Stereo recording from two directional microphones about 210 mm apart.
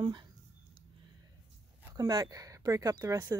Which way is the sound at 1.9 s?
20° right (ahead or behind).